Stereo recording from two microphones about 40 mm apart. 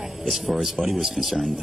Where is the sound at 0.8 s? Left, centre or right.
Centre.